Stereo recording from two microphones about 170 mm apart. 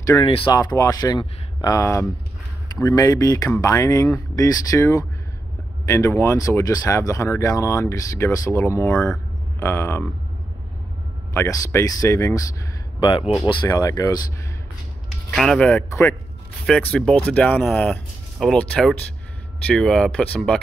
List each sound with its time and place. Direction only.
0.2 s speech: 30° left (ahead or behind); by 10.0 s 15° left (ahead or behind)
11.3 s speech: 15° left (ahead or behind)
13.2 s speech: centre (ahead or behind)
13.5 s speech: 25° left (ahead or behind)
15.3 s speech: centre (ahead or behind)